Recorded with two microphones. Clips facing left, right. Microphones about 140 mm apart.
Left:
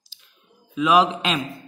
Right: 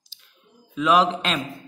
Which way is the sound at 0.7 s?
5° left (ahead or behind).